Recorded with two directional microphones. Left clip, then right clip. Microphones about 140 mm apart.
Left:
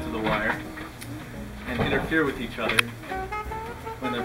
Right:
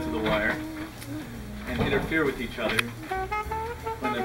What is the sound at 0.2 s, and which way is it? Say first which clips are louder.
Speech: even; 20° left (ahead or behind).